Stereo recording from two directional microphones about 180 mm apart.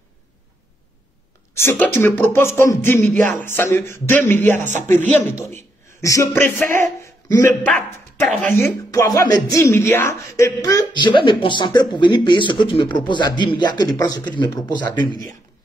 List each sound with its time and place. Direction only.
1.6 s a man's voice: 15° left (ahead or behind)
7.7 s speech: 5° left (ahead or behind)
8.5 s speech: 15° left (ahead or behind)